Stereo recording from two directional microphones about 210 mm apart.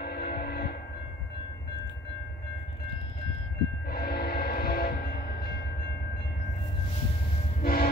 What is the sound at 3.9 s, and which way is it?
Vehicle, 45° left (ahead or behind).